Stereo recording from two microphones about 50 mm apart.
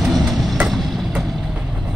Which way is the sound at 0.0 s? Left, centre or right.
Centre.